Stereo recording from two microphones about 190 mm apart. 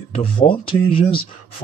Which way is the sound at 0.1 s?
30° left (ahead or behind).